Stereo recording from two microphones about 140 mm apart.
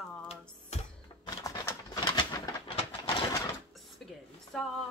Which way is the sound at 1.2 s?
25° left (ahead or behind).